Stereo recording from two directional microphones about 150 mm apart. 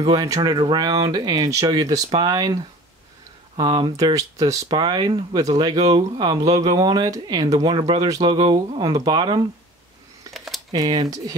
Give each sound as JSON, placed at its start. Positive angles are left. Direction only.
{"t": 0.0, "sound": "speech", "side_deg": -25}
{"t": 10.3, "sound": "a sound", "side_deg": 0}
{"t": 10.7, "sound": "speech", "side_deg": -25}